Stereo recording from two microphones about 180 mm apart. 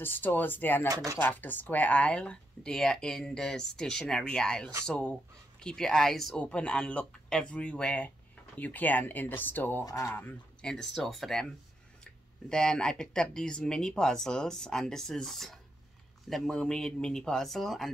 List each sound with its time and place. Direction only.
0.0 s speech: 10° left (ahead or behind)
0.8 s speech: 20° right (ahead or behind)
1.1 s speech: 10° left (ahead or behind)